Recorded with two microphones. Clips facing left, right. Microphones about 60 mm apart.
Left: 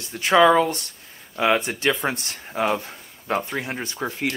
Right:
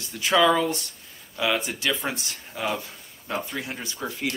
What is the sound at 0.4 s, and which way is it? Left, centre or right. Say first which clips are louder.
Speech: left 5 dB; left.